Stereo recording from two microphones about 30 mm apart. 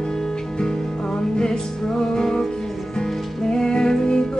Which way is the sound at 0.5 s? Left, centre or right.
Left.